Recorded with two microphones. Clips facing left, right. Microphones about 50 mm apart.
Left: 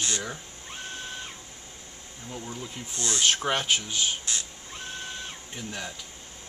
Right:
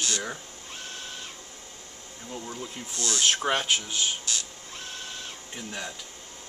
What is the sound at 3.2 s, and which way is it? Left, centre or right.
Speech, centre.